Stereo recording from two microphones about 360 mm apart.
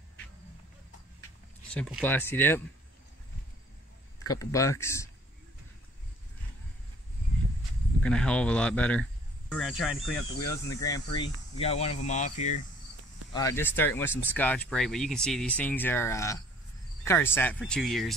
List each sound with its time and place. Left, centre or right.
1.7 s speech: centre
4.2 s speech: centre
8.0 s speech: centre
13.3 s speech: centre